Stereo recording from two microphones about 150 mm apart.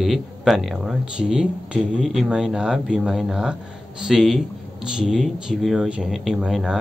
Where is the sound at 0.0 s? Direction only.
Centre (ahead or behind).